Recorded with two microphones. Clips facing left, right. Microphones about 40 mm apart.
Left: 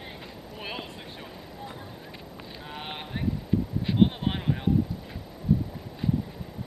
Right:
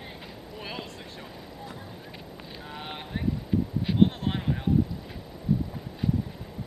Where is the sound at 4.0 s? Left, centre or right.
Centre.